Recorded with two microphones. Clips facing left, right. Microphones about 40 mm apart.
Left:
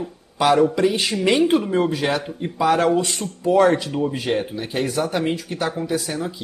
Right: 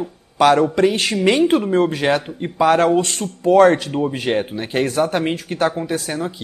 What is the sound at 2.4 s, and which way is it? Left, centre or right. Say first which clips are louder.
Speech: right 3 dB; right.